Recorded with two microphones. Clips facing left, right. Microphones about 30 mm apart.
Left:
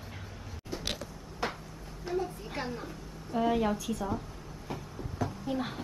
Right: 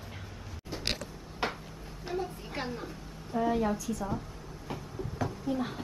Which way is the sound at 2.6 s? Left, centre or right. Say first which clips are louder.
Even; centre.